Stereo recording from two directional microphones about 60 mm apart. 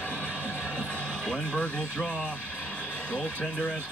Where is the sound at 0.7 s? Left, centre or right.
Centre.